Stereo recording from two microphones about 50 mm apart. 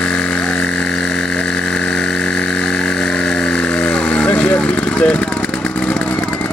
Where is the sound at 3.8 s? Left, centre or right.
Left.